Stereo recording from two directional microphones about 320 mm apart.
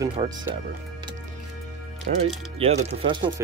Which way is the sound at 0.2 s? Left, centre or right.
Centre.